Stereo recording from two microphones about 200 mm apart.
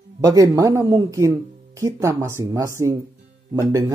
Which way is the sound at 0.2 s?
15° right (ahead or behind).